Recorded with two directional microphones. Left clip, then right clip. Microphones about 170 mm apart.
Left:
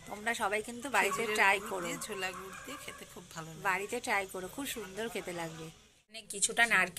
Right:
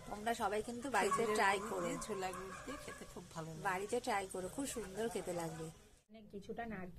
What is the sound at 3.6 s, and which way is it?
A woman's voice, 10° left (ahead or behind).